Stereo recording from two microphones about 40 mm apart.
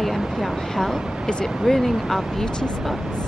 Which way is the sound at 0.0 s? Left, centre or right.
Centre.